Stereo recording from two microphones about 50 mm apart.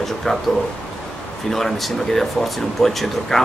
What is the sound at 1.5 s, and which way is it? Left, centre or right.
Speech, centre.